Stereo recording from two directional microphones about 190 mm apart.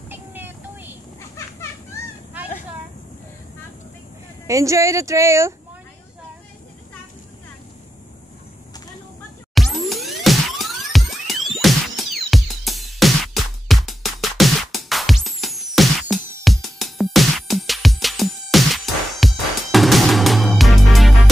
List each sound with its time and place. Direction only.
0.1 s vehicle: 10° right (ahead or behind)
4.5 s speech: 15° right (ahead or behind)
9.5 s music: centre (ahead or behind)